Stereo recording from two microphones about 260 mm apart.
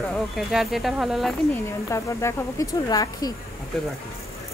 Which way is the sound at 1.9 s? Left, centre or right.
Centre.